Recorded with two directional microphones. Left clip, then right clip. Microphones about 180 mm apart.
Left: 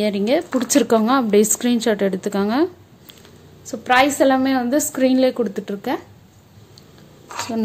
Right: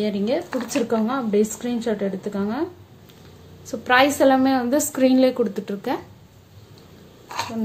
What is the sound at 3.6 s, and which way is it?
A woman's voice, 15° left (ahead or behind).